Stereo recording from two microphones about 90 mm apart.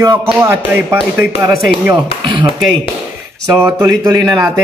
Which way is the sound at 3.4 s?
35° right (ahead or behind).